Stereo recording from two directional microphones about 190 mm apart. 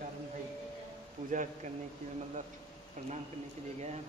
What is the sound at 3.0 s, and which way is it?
Speech, 40° right (ahead or behind).